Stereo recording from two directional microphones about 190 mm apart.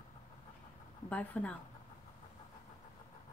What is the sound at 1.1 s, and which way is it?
Speech, 5° left (ahead or behind).